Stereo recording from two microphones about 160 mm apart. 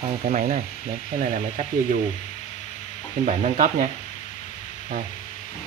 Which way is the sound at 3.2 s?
50° right (ahead or behind).